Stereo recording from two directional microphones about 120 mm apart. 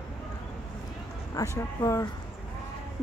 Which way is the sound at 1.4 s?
30° left (ahead or behind).